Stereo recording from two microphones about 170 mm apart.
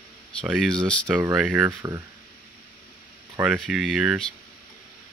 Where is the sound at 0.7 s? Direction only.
5° left (ahead or behind).